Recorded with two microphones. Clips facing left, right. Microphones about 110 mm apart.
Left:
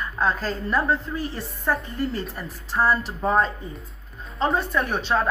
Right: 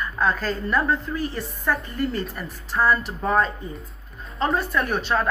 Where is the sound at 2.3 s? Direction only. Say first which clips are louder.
Even; 30° left (ahead or behind).